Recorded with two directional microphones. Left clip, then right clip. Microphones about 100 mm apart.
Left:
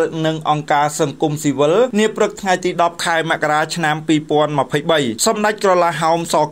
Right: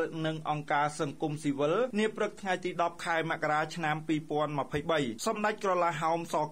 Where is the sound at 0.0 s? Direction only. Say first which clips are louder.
Left 15 dB; 15° left (ahead or behind).